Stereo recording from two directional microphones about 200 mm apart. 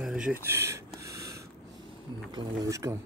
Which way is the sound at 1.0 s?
15° right (ahead or behind).